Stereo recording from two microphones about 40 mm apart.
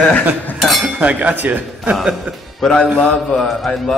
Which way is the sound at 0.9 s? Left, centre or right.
Right.